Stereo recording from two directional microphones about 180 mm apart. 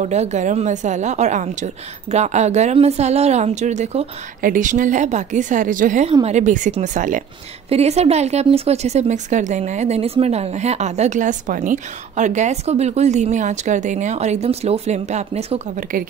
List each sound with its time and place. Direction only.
0.0 s a woman's voice: 40° right (ahead or behind)